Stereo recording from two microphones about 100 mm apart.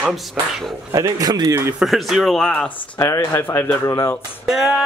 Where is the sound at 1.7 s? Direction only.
5° right (ahead or behind).